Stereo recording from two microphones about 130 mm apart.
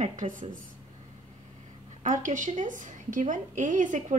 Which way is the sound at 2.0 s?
80° right.